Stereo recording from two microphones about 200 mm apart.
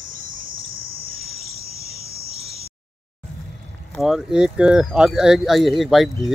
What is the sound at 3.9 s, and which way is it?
Speech, centre (ahead or behind).